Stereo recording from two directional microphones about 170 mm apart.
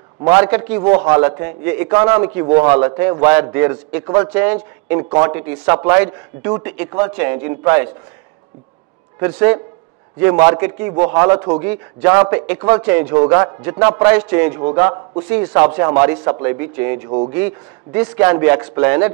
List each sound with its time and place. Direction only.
0.2 s a man's voice: 10° right (ahead or behind)
9.2 s a man's voice: 10° right (ahead or behind)
14.6 s a man's voice: 25° right (ahead or behind)
15.2 s a man's voice: 10° right (ahead or behind)